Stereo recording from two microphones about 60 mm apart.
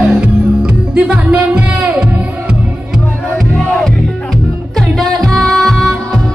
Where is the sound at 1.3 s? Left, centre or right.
Right.